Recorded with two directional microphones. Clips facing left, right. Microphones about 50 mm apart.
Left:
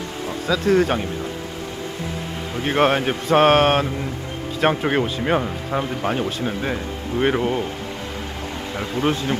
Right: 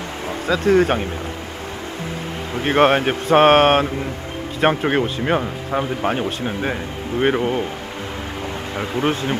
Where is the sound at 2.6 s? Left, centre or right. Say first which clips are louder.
Right 3 dB; centre.